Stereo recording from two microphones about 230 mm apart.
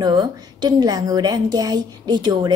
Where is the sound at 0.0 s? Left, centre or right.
Centre.